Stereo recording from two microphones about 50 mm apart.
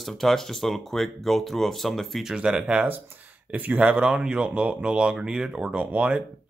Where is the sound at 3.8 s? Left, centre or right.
Centre.